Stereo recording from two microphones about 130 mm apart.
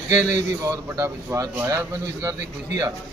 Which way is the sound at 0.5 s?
25° right (ahead or behind).